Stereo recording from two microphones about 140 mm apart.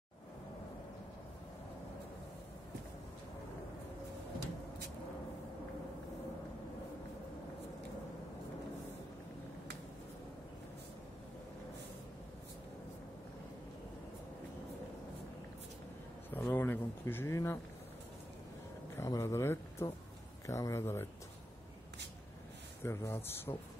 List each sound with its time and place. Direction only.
16.3 s a sound: 15° left (ahead or behind)
18.9 s speech: 20° left (ahead or behind)
22.8 s speech: 15° left (ahead or behind)